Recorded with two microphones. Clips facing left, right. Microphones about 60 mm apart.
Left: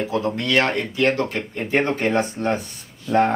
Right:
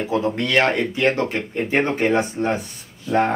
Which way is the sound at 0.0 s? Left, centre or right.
Centre.